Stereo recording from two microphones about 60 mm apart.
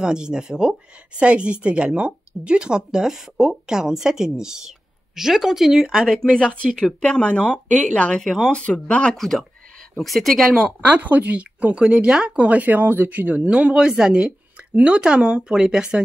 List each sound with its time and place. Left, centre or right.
0.0 s speech: centre
6.2 s speech: centre
8.2 s speech: centre
8.5 s speech: centre
9.1 s speech: centre
10.8 s speech: right